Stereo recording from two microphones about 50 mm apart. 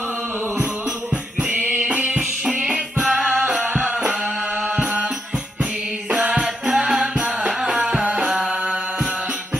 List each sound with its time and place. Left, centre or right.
1.1 s music: right
6.1 s music: right
8.0 s music: right